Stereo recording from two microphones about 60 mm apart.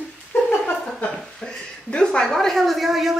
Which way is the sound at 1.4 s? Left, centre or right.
Centre.